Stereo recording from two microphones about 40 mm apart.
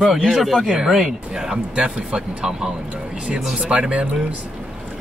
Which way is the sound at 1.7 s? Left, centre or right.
Right.